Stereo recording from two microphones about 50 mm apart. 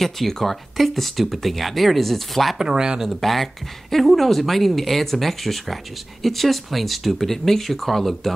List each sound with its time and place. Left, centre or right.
0.0 s speech: centre
2.6 s speech: centre
3.0 s speech: centre